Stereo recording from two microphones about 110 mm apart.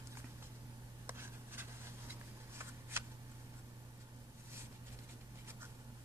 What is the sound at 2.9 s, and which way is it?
Scissors, 25° right (ahead or behind).